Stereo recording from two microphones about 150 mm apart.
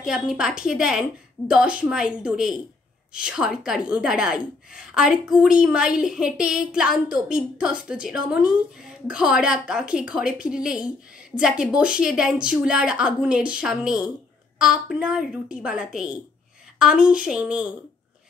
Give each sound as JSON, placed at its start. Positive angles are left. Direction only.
{"t": 0.0, "sound": "a woman's voice", "side_deg": -5}